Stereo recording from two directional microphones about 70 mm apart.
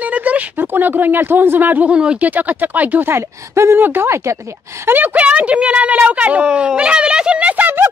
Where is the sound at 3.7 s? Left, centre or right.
Right.